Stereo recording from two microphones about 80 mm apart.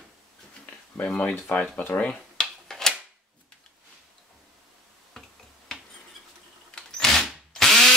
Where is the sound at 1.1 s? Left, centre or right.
Centre.